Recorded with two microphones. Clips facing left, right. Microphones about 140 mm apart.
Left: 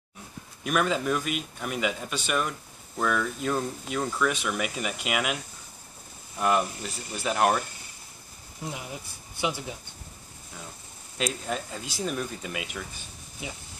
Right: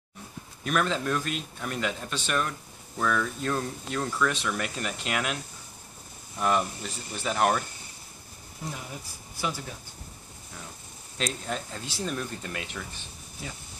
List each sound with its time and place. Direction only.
0.7 s speech: 10° left (ahead or behind)
9.4 s speech: 20° left (ahead or behind)
11.1 s speech: 5° left (ahead or behind)